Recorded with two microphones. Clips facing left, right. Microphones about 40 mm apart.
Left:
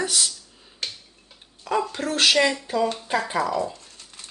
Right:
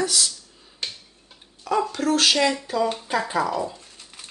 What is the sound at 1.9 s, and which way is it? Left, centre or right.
Speech, left.